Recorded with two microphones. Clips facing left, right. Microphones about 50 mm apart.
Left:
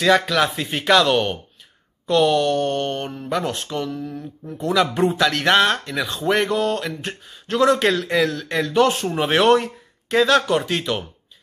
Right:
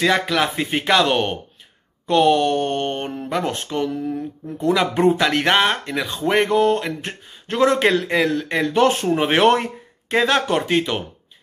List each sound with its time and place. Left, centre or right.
0.0 s speech: centre